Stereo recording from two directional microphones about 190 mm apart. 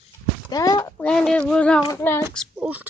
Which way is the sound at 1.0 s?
5° left (ahead or behind).